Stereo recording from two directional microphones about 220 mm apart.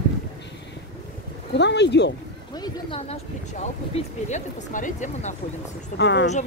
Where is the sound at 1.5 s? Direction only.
50° left (ahead or behind).